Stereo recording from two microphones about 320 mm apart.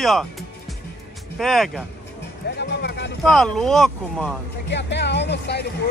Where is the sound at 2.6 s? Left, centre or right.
Left.